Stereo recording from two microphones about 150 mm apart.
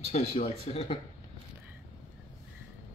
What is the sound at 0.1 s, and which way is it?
Speech, 40° left (ahead or behind).